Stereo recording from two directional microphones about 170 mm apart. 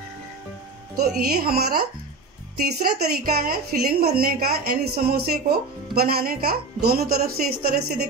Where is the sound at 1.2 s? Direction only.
65° right (ahead or behind).